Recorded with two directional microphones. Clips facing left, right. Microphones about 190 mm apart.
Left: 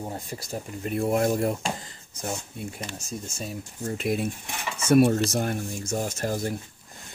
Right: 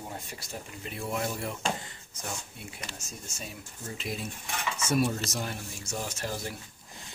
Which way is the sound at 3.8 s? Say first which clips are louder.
Left 10 dB; 55° left (ahead or behind).